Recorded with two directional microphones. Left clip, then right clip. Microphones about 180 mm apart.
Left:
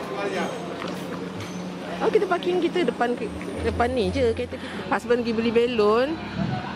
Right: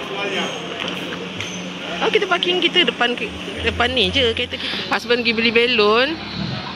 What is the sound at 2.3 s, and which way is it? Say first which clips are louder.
Speech: right 7 dB; 15° left (ahead or behind).